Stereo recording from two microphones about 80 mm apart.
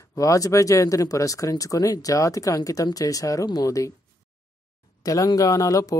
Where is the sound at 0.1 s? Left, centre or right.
Left.